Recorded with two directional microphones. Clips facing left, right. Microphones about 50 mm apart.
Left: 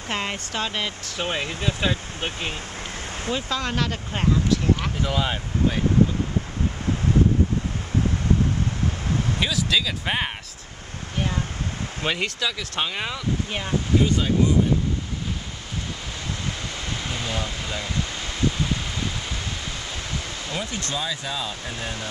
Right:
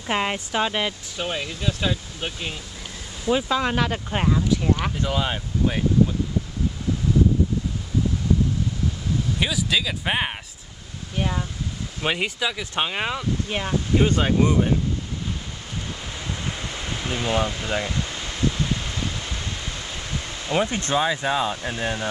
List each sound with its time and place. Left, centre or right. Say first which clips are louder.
0.1 s speech: right 4 dB; centre
1.4 s speech: left 1 dB; left
3.3 s speech: right 6 dB; centre
9.4 s speech: even; centre
12.0 s speech: right 2 dB; centre
13.5 s speech: right 2 dB; centre
13.9 s speech: right 1 dB; right
16.4 s a sound: even; centre
20.5 s speech: right 8 dB; right